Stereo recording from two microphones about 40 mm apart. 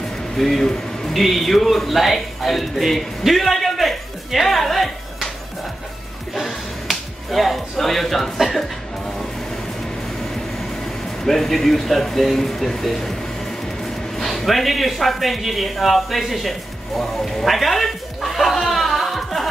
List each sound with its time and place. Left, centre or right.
0.4 s speech: centre
2.8 s a sound: centre
6.3 s music: centre
11.2 s speech: centre
14.1 s speech: centre